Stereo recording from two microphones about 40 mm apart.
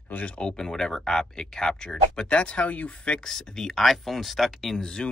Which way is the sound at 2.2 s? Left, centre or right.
Left.